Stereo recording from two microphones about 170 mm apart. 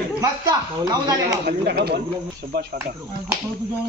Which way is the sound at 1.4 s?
70° right (ahead or behind).